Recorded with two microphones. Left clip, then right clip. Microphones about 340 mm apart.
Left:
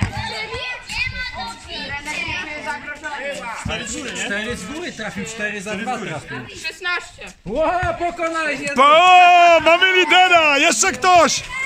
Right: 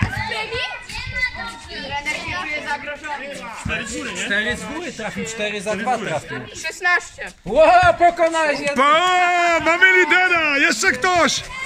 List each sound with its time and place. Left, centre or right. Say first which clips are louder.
5.0 s a man's voice: right 1 dB; centre
7.5 s a man's voice: right 7 dB; right
8.4 s a man's voice: right 3 dB; centre
8.7 s a man's voice: left 6 dB; centre